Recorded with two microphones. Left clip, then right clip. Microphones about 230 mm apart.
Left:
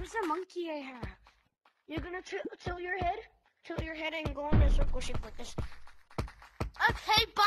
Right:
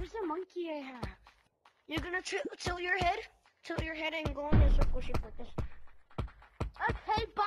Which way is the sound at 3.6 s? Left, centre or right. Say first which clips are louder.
Right 1 dB; centre.